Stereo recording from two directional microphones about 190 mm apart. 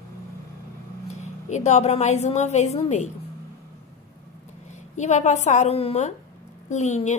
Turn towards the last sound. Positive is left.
turn(degrees=40)  # may be behind; listen again after turning